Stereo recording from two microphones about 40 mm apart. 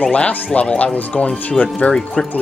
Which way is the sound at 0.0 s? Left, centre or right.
Left.